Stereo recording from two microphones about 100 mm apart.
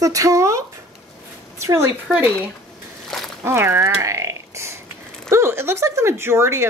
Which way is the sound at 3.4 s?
25° right (ahead or behind).